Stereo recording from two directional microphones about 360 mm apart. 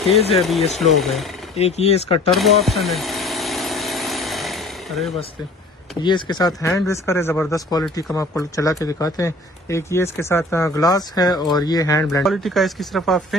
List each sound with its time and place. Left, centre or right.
0.4 s speech: centre
1.6 s speech: centre
2.3 s engine: centre
6.0 s speech: centre